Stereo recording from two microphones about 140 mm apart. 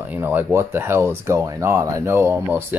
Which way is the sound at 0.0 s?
15° right (ahead or behind).